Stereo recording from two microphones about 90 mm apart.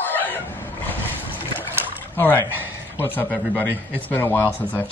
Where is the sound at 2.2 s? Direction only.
25° left (ahead or behind).